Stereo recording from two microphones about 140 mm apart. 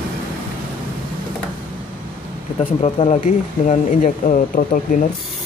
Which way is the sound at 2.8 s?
50° left (ahead or behind).